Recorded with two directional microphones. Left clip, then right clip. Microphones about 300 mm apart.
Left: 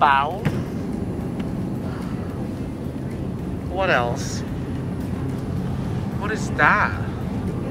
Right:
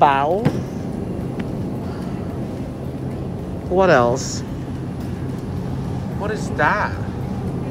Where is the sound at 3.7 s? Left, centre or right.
Right.